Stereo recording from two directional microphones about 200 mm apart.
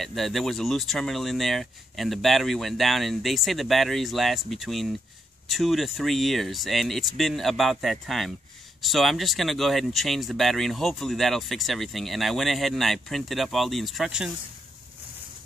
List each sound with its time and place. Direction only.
0.0 s speech: centre (ahead or behind)